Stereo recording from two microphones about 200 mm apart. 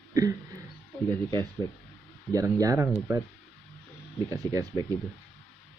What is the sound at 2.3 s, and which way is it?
Speech, 15° right (ahead or behind).